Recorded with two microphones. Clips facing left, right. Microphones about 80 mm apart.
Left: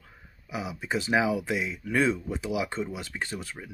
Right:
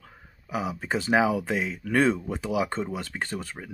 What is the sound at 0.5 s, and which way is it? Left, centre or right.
Speech, right.